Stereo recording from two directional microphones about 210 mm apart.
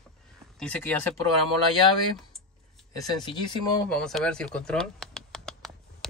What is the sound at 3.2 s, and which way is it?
Speech, 20° left (ahead or behind).